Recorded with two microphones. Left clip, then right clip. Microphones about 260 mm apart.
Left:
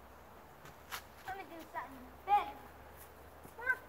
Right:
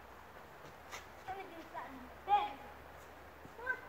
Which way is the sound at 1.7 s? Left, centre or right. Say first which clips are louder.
Left 3 dB; left.